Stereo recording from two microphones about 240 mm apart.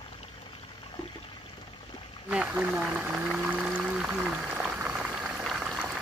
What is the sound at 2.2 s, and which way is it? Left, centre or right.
Pour, centre.